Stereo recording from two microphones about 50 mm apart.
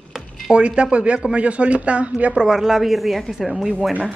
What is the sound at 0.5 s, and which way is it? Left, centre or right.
Speech, right.